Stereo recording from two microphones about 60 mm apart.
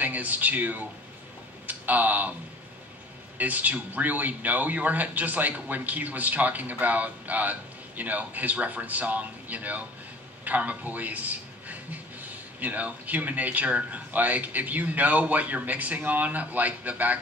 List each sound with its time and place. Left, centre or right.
0.0 s a man's voice: right
3.3 s a man's voice: right